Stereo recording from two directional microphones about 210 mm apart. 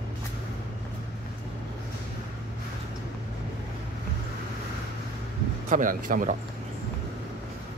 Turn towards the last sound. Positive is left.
turn(degrees=-40)  # may be behind; listen again after turning